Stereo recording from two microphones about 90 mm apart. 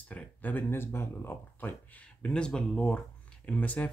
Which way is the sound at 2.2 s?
10° left (ahead or behind).